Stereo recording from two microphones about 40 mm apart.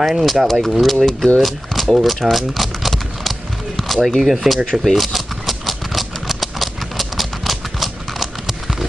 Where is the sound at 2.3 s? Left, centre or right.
Centre.